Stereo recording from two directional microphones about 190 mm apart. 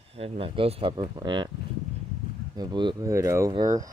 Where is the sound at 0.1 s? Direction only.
30° right (ahead or behind).